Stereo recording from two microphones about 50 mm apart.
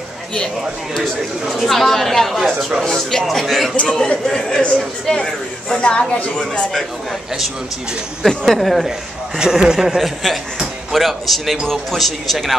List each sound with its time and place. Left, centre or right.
1.5 s speech: centre
2.8 s speech: centre
3.3 s speech: centre
5.2 s speech: centre
6.3 s speech: centre
8.2 s speech: centre
9.4 s speech: centre